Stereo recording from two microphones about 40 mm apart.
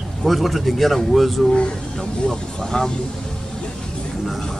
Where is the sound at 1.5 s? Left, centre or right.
Left.